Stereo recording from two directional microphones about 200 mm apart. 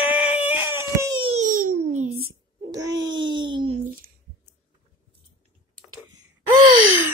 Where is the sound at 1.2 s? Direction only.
35° right (ahead or behind).